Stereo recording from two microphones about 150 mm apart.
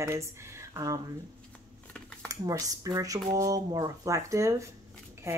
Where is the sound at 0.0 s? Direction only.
20° right (ahead or behind).